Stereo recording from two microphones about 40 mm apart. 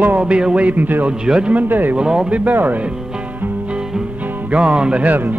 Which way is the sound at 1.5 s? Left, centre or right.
Right.